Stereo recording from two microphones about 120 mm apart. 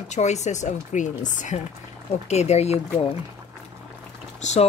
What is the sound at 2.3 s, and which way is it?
Speech, 65° left (ahead or behind).